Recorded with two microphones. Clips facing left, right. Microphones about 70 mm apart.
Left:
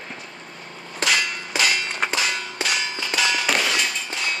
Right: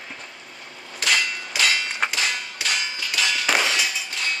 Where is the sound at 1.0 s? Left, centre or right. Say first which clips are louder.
Left 1 dB; left.